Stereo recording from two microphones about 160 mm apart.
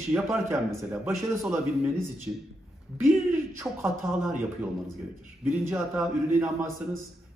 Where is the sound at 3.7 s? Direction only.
15° right (ahead or behind).